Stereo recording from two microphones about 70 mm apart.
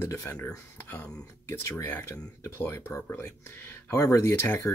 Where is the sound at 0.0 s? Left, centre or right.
Left.